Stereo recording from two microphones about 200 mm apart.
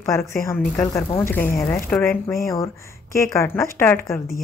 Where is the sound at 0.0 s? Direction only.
15° left (ahead or behind).